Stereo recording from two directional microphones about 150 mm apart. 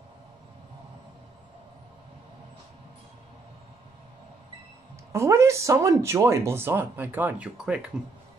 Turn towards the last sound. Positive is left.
turn(degrees=-5)  # may be behind; listen again after turning